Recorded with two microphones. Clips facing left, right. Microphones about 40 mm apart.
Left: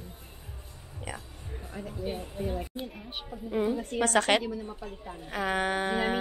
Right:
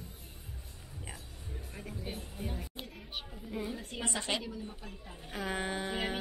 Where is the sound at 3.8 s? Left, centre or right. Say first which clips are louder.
Left 12 dB; left.